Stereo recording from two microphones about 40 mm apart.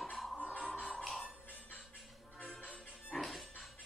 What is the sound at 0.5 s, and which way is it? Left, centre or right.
Music, left.